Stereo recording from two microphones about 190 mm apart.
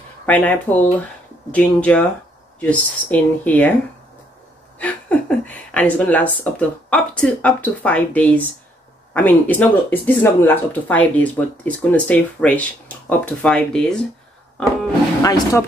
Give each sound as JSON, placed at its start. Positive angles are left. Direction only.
{"t": 0.3, "sound": "speech", "side_deg": 10}
{"t": 4.7, "sound": "speech", "side_deg": 5}
{"t": 15.2, "sound": "speech", "side_deg": 20}